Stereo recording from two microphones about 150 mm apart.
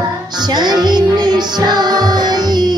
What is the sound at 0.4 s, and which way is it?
Music, 30° right (ahead or behind).